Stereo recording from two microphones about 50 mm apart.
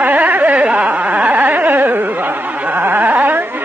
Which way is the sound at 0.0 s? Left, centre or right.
Right.